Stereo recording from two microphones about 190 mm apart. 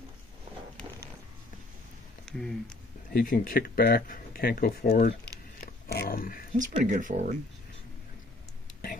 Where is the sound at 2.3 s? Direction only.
Centre (ahead or behind).